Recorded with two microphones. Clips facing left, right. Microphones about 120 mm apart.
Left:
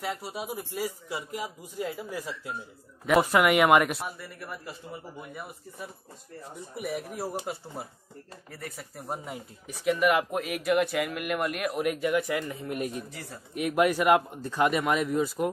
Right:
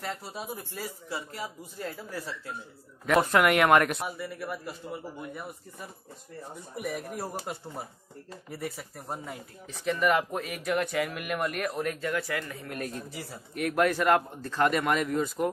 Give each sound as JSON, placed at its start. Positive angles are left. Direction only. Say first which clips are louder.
{"t": 0.0, "sound": "a man's voice", "louder": "left 3 dB", "side_deg": 10}
{"t": 9.1, "sound": "speech", "louder": "left 2 dB", "side_deg": 15}